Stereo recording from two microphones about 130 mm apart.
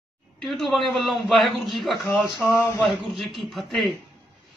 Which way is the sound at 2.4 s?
20° left (ahead or behind).